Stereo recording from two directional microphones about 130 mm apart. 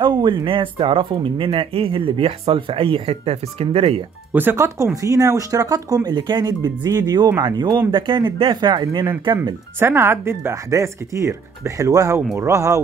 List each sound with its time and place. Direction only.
0.0 s speech: 35° right (ahead or behind)
4.3 s speech: 15° right (ahead or behind); by 9.6 s 30° right (ahead or behind)
9.8 s speech: 15° right (ahead or behind)